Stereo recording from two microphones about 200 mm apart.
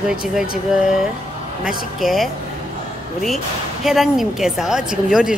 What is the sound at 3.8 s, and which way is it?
A woman's voice, centre (ahead or behind).